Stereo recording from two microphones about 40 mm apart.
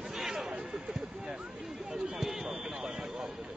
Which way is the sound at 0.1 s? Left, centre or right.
Centre.